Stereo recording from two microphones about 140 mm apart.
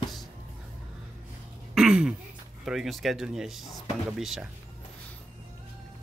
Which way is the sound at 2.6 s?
Centre (ahead or behind).